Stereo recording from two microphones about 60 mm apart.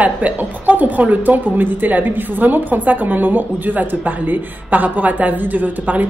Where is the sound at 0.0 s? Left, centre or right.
Right.